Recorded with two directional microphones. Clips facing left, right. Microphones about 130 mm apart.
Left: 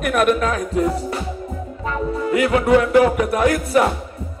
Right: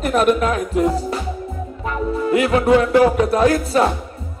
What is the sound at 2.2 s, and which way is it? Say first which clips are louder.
Music: right 1 dB; 25° right (ahead or behind).